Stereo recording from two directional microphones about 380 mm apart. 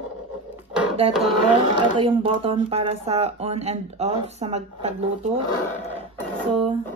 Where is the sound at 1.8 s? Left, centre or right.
Centre.